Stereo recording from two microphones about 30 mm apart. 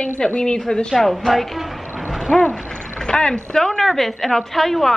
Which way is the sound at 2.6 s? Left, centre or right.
Left.